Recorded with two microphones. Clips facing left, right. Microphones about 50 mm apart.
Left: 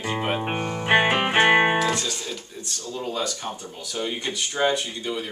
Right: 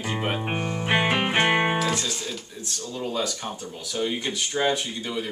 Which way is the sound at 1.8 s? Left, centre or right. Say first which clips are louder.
Left 2 dB; centre.